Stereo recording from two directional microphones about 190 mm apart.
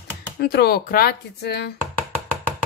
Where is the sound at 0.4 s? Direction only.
60° left (ahead or behind).